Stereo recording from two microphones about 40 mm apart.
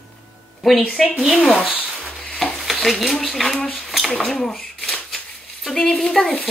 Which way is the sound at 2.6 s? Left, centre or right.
Centre.